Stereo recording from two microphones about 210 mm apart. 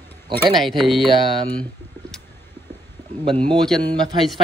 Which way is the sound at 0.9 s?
25° right (ahead or behind).